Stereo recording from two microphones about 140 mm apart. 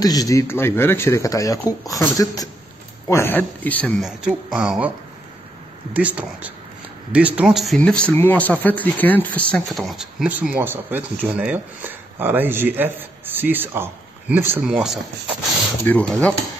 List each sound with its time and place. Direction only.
0.0 s speech: 25° left (ahead or behind)
4.0 s speech: 5° right (ahead or behind)
5.9 s speech: 10° right (ahead or behind)
14.6 s speech: 5° right (ahead or behind)
15.8 s speech: 10° left (ahead or behind)